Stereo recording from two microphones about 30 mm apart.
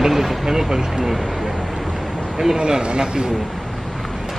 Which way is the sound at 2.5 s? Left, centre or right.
Right.